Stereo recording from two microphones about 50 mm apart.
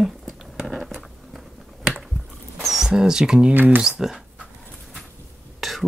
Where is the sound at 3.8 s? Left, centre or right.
Centre.